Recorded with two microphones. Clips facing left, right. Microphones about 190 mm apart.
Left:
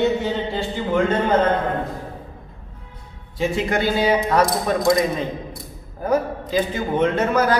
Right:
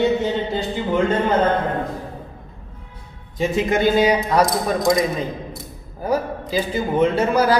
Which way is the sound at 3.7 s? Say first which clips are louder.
Right 4 dB; 15° right (ahead or behind).